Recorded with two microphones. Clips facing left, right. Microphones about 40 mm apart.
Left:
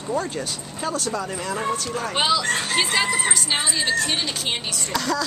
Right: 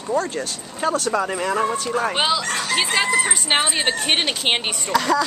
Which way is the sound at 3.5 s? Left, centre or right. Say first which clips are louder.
Right 5 dB; right.